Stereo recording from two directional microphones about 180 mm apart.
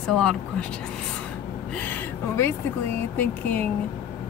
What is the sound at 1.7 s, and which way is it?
Speech, 10° left (ahead or behind).